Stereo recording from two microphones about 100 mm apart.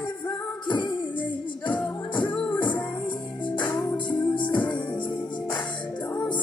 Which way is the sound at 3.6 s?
50° left (ahead or behind).